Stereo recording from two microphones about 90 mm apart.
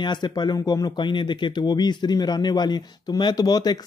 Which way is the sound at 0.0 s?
55° left (ahead or behind).